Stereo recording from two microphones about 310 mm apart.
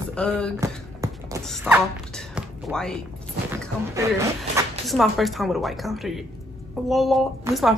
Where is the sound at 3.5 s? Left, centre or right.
Centre.